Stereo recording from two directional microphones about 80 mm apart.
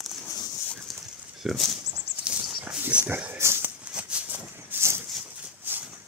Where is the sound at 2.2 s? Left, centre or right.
Centre.